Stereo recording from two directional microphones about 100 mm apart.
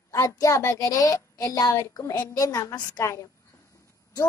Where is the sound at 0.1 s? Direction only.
30° left (ahead or behind).